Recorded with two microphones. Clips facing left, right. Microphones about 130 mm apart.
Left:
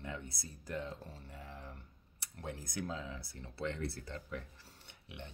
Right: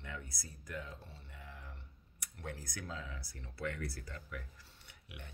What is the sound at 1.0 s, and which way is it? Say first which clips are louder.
Speech: left 4 dB; 40° left (ahead or behind).